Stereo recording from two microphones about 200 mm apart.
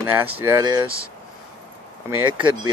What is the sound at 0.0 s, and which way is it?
Speech, 10° right (ahead or behind).